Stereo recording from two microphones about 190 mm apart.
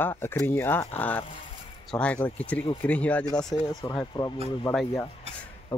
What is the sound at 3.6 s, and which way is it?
Speech, 20° left (ahead or behind).